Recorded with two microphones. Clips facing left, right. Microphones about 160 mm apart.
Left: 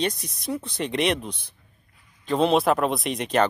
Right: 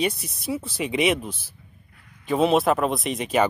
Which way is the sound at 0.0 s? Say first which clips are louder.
Right 1 dB; 5° right (ahead or behind).